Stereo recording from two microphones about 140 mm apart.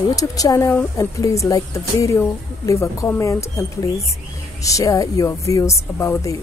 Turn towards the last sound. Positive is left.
turn(degrees=25)  # may be behind; listen again after turning